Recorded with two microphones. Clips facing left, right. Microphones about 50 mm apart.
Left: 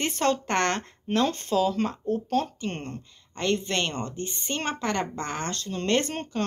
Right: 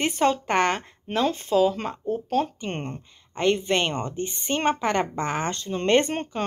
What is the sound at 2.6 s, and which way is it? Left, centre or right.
Speech, centre.